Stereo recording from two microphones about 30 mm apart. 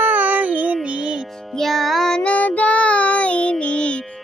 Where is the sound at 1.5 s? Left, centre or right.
Centre.